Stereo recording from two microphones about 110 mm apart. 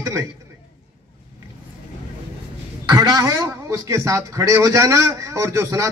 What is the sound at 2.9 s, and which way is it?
A man's voice, 35° right (ahead or behind).